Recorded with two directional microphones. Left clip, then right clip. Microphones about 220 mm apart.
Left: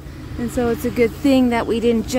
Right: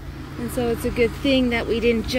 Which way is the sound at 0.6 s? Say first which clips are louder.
Left 3 dB; 20° left (ahead or behind).